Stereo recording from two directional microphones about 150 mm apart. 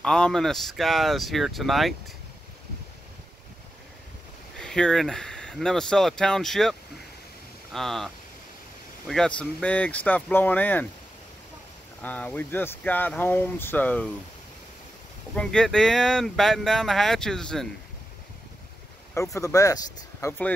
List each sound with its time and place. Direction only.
0.0 s speech: 5° left (ahead or behind)
4.6 s speech: 5° left (ahead or behind)
12.0 s speech: 10° left (ahead or behind)
15.3 s speech: 5° left (ahead or behind)
19.1 s speech: 20° left (ahead or behind)